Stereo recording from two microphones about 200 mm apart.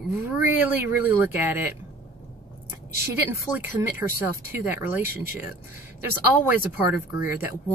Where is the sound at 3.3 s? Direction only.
15° right (ahead or behind).